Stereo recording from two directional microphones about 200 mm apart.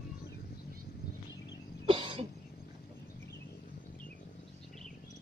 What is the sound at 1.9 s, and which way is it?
Cough, 25° right (ahead or behind).